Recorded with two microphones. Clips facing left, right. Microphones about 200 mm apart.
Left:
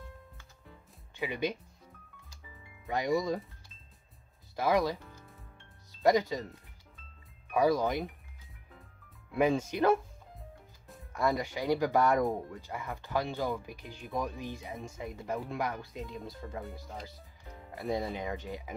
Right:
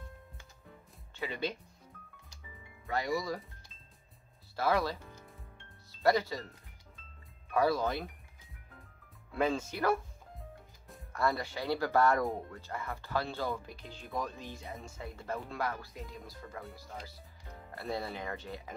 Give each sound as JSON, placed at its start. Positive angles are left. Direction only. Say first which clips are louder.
{"t": 1.1, "sound": "speech", "louder": "left 3 dB", "side_deg": 15}
{"t": 2.9, "sound": "speech", "louder": "left 4 dB", "side_deg": 20}
{"t": 4.6, "sound": "speech", "louder": "left 3 dB", "side_deg": 15}
{"t": 7.5, "sound": "speech", "louder": "left 2 dB", "side_deg": 15}
{"t": 9.3, "sound": "speech", "louder": "left 4 dB", "side_deg": 15}
{"t": 11.1, "sound": "speech", "louder": "left 2 dB", "side_deg": 15}
{"t": 17.6, "sound": "speech", "louder": "left 4 dB", "side_deg": 15}